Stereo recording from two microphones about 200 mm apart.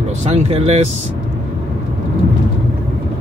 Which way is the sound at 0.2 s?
35° right (ahead or behind).